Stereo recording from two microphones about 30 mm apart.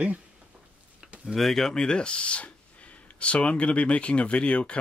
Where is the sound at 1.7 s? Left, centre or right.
Left.